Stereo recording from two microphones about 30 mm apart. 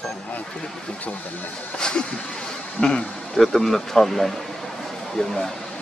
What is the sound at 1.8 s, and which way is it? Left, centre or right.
Speech, left.